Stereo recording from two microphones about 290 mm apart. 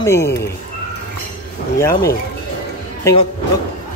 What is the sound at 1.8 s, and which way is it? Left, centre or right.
Speech, centre.